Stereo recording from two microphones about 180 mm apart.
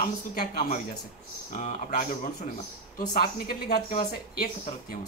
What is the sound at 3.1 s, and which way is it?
Speech, 55° left (ahead or behind).